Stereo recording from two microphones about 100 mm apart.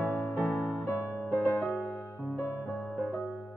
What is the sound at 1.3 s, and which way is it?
Music, 30° left (ahead or behind).